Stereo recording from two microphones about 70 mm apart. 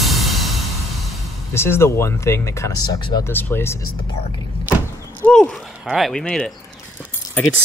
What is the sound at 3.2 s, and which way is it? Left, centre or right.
Speech, left.